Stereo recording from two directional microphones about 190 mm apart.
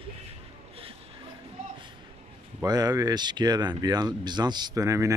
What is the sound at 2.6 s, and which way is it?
Speech, 20° right (ahead or behind).